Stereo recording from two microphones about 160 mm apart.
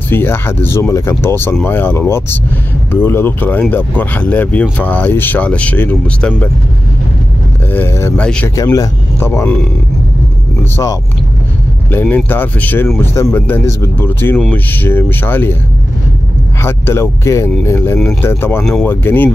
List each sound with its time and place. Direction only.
0.1 s speech: 15° left (ahead or behind)
7.7 s speech: 15° left (ahead or behind)
10.6 s speech: 20° left (ahead or behind)
16.6 s speech: 15° left (ahead or behind)